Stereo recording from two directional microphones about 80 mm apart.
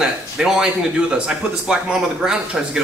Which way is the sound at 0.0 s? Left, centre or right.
Centre.